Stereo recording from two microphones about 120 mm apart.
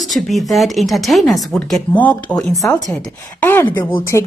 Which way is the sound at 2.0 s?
10° left (ahead or behind).